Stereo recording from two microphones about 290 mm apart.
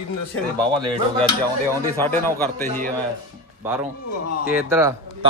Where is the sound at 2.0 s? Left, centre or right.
Centre.